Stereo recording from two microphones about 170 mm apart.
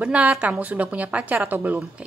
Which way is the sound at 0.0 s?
5° right (ahead or behind).